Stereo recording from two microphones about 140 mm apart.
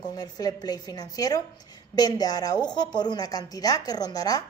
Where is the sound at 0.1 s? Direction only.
25° left (ahead or behind).